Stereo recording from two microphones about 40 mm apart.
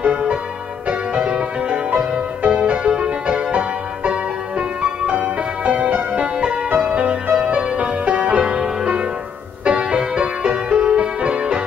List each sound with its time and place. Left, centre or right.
0.0 s music: right